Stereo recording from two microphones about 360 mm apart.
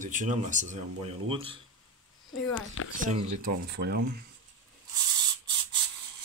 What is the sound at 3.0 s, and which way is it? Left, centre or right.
Speech, centre.